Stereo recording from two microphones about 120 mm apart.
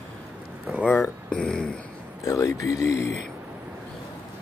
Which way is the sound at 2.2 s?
25° left (ahead or behind).